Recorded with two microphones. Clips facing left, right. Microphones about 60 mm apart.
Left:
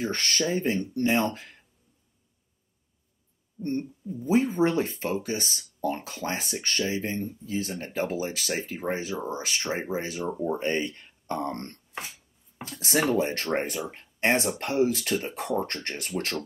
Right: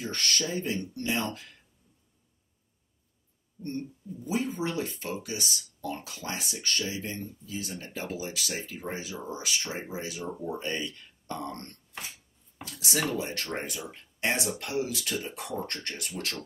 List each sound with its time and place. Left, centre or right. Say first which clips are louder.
0.0 s speech: left 4 dB; left
3.6 s speech: left 6 dB; left